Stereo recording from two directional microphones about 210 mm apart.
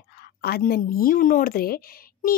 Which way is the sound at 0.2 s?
45° left (ahead or behind).